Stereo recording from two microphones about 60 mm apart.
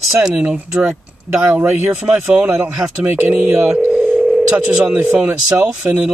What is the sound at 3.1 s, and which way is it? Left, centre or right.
Speech, right.